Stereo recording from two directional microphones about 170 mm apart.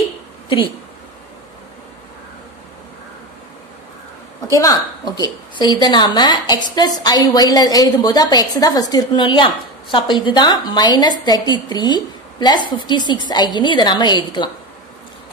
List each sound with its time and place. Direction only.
4.5 s a woman's voice: 20° left (ahead or behind)